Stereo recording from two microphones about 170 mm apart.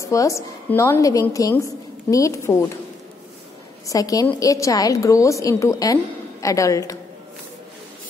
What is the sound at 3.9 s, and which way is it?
A woman's voice, 20° left (ahead or behind).